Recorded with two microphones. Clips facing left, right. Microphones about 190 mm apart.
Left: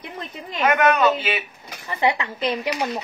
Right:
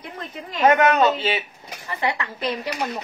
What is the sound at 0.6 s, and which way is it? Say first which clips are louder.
Speech: right 1 dB; 30° right (ahead or behind).